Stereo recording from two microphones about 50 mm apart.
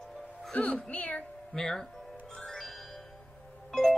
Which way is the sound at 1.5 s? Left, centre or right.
Centre.